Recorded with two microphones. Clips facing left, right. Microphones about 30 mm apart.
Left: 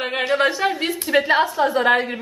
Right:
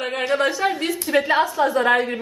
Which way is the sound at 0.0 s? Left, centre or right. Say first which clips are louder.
Left 1 dB; centre.